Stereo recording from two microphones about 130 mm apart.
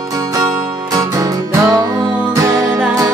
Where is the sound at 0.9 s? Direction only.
25° right (ahead or behind).